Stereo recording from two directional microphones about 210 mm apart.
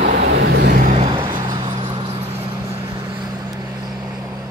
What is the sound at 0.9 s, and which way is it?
Vehicle, 20° right (ahead or behind).